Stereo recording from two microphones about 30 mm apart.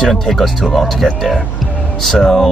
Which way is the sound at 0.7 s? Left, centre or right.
Centre.